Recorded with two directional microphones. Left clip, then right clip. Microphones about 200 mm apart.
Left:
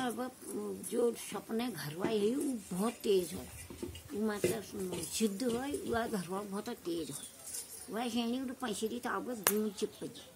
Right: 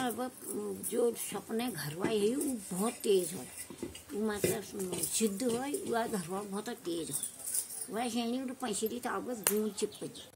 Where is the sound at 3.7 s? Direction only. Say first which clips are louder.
Right 1 dB; 35° right (ahead or behind).